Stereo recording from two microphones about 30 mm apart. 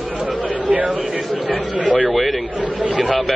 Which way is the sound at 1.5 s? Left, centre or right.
Left.